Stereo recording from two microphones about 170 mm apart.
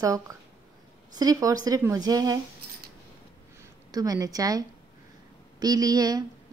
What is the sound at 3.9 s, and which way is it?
Speech, 20° right (ahead or behind).